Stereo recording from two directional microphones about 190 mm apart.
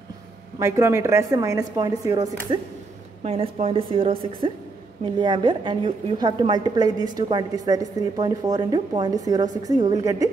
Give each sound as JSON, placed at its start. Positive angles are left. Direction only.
{"t": 0.6, "sound": "speech", "side_deg": -15}
{"t": 3.3, "sound": "a woman's voice", "side_deg": -30}